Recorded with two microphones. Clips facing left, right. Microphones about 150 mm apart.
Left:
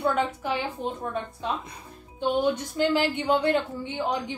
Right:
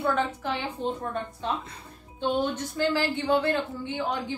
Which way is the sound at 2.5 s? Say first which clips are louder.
Left 2 dB; 15° left (ahead or behind).